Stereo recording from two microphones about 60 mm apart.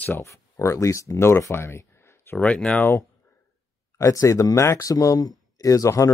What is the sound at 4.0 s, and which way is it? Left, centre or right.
Speech, left.